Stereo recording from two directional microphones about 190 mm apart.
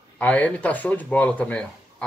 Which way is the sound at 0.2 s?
10° left (ahead or behind).